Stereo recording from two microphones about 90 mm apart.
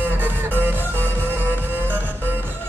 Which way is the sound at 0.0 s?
25° right (ahead or behind).